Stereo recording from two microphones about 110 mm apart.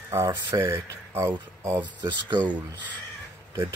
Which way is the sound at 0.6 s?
20° right (ahead or behind).